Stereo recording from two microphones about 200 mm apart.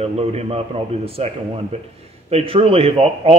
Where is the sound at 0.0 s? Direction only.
30° right (ahead or behind).